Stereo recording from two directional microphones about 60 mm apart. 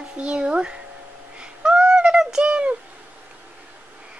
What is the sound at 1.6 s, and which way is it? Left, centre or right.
Fowl, centre.